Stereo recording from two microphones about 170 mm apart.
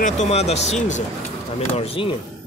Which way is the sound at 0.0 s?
40° left (ahead or behind).